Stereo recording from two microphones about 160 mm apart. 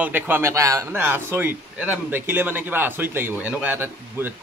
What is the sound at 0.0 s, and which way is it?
A man's voice, 10° right (ahead or behind).